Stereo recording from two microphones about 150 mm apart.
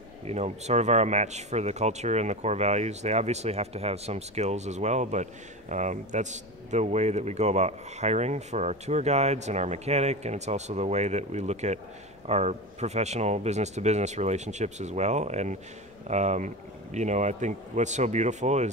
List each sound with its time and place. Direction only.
0.3 s speech: 45° right (ahead or behind)